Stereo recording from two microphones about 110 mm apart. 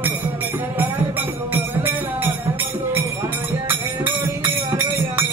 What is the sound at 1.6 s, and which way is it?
Music, 20° right (ahead or behind).